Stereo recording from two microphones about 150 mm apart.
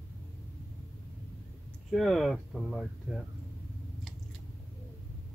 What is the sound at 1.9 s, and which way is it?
Speech, centre (ahead or behind).